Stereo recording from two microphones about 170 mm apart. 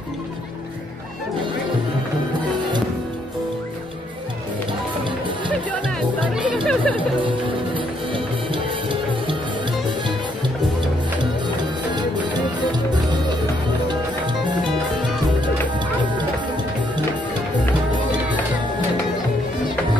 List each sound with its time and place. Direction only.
5.7 s music: 5° left (ahead or behind)
6.4 s chatter: centre (ahead or behind)
7.0 s music: 30° right (ahead or behind)
12.4 s music: 25° right (ahead or behind)